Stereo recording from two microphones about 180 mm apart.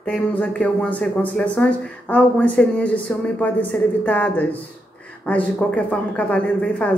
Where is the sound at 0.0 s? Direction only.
10° left (ahead or behind).